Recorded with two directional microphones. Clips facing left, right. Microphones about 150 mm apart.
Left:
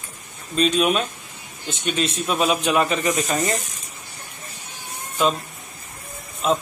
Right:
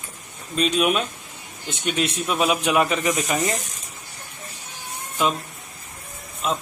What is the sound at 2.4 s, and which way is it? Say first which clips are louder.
Speech: even; 10° right (ahead or behind).